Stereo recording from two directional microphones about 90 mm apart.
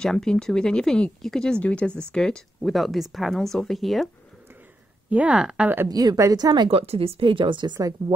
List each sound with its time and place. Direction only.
0.0 s speech: 5° left (ahead or behind)
5.1 s speech: 15° right (ahead or behind)
5.9 s a woman's voice: 45° right (ahead or behind)
6.7 s speech: 90° right; by 7.9 s 55° right (ahead or behind)